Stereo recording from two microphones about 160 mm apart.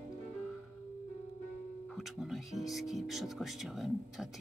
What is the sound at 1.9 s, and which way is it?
Speech, centre (ahead or behind).